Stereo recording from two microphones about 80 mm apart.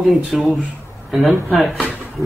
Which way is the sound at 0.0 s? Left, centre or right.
Centre.